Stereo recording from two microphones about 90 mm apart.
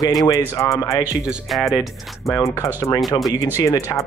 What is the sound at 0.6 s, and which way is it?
Speech, 40° left (ahead or behind).